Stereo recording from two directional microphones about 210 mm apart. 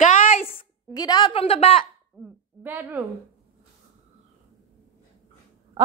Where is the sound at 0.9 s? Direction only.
20° left (ahead or behind).